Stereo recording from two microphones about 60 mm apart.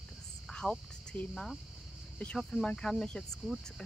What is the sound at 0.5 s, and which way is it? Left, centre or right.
Cricket, centre.